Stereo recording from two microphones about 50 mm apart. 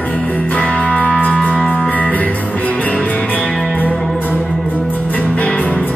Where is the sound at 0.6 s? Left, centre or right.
Left.